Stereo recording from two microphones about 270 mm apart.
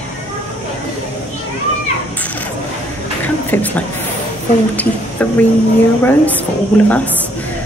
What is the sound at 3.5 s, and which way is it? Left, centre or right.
Speech, centre.